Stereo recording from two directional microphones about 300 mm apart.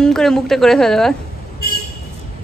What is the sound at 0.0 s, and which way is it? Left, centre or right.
A man's voice, centre.